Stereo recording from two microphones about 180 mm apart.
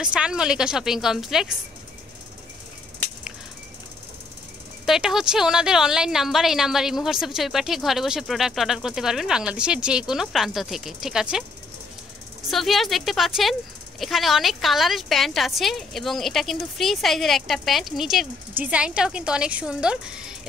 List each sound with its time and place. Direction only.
0.0 s speech: 5° right (ahead or behind)
4.8 s speech: centre (ahead or behind)
12.4 s speech: centre (ahead or behind)